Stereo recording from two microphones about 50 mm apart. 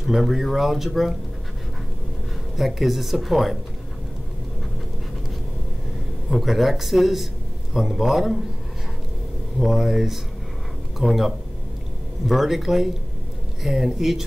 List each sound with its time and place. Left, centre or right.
0.0 s speech: centre
2.5 s speech: centre
6.3 s a man's voice: centre
9.6 s a man's voice: centre